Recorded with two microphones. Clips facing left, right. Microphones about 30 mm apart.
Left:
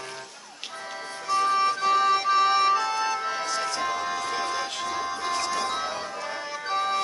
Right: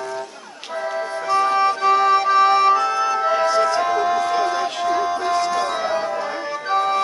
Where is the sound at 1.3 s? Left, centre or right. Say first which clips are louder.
Right 5 dB; centre.